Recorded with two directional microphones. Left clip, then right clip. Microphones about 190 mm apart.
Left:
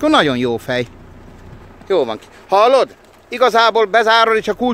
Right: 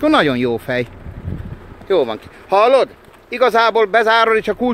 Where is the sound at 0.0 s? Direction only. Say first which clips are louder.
Left 1 dB; 10° left (ahead or behind).